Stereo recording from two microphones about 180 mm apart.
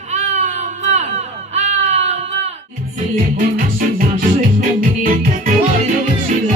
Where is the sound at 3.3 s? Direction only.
45° right (ahead or behind).